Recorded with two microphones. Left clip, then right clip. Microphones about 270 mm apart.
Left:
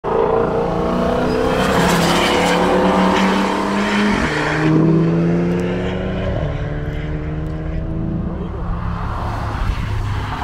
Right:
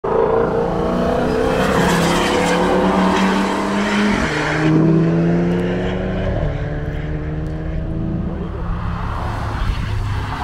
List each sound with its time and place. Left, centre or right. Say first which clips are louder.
0.2 s vehicle: even; left
1.9 s vehicle: left 1 dB; centre